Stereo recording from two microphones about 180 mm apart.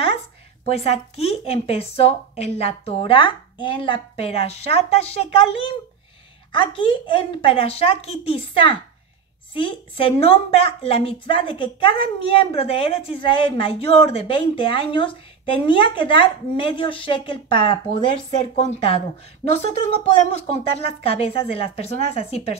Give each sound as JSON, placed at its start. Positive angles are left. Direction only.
{"t": 0.7, "sound": "a woman's voice", "side_deg": 35}